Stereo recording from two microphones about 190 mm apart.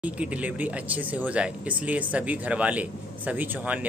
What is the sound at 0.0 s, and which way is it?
Speech, 5° right (ahead or behind).